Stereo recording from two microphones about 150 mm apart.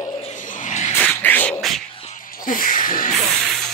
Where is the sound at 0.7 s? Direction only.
55° left (ahead or behind).